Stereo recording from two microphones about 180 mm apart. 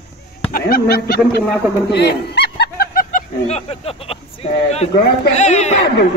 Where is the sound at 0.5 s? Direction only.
60° left (ahead or behind).